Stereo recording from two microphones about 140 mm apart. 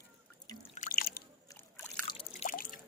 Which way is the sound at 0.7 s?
75° left (ahead or behind).